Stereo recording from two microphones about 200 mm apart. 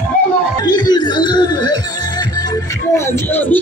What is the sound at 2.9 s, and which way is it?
Music, 15° left (ahead or behind).